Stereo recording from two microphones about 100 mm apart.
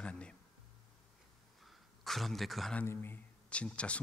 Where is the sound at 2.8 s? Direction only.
20° left (ahead or behind).